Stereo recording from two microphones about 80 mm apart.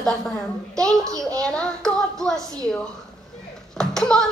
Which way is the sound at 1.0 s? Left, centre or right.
Right.